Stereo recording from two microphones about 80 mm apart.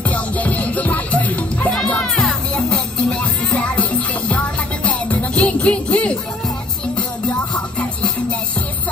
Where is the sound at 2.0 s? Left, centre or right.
Centre.